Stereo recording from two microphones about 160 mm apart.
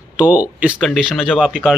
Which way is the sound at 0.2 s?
10° right (ahead or behind).